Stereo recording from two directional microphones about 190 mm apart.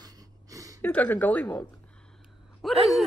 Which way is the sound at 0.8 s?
10° left (ahead or behind).